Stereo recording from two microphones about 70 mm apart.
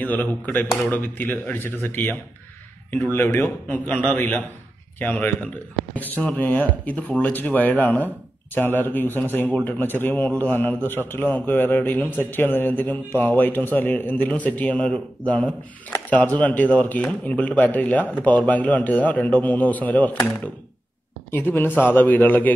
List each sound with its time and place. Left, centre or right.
0.0 s a man's voice: left
21.3 s a man's voice: left